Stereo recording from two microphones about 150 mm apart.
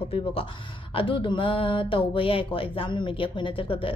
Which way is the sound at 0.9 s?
35° left (ahead or behind).